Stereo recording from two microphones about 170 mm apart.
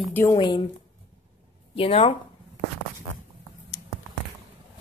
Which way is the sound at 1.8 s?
35° left (ahead or behind).